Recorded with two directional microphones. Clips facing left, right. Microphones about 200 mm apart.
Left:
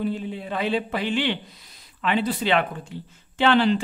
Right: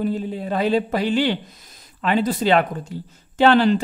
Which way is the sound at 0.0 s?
40° right (ahead or behind).